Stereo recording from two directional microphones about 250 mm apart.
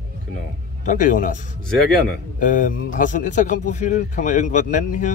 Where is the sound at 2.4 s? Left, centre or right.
Left.